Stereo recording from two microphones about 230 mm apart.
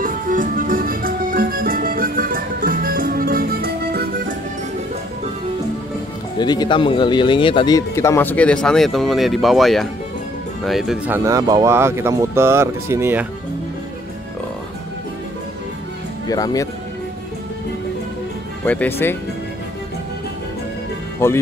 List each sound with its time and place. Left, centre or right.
0.0 s music: right
6.4 s speech: centre
11.2 s speech: centre
16.3 s speech: centre
18.7 s speech: centre
21.2 s speech: centre